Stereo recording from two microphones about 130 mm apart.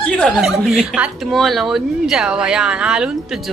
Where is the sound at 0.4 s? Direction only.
5° right (ahead or behind).